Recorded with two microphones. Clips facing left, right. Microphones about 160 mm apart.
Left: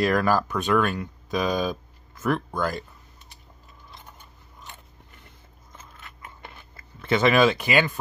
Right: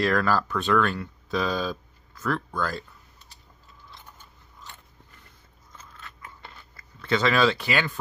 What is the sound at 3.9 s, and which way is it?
Biting, 15° left (ahead or behind).